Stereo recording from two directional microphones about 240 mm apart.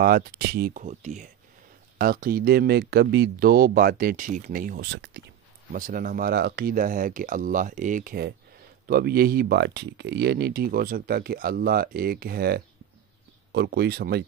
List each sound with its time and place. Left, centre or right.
0.0 s speech: right
5.7 s speech: right